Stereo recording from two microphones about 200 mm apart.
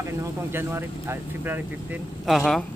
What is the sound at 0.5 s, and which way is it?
Speech, 10° right (ahead or behind).